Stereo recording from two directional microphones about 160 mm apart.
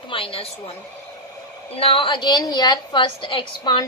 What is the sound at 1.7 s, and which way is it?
A woman's voice, 35° left (ahead or behind).